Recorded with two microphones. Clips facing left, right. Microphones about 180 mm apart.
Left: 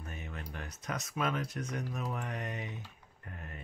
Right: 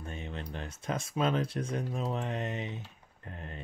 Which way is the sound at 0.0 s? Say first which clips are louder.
Right 4 dB; 25° right (ahead or behind).